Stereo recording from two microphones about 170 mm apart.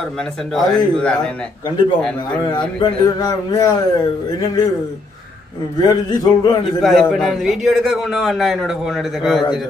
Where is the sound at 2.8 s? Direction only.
20° left (ahead or behind).